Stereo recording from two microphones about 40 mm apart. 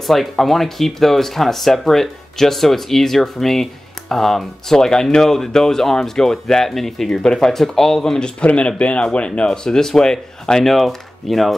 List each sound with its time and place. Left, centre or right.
0.0 s speech: centre
4.7 s speech: centre
8.4 s speech: left
9.7 s speech: centre